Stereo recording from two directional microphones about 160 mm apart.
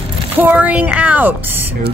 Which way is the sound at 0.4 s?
10° right (ahead or behind).